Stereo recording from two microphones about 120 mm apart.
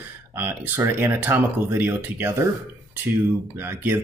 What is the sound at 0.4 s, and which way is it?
Speech, 15° right (ahead or behind).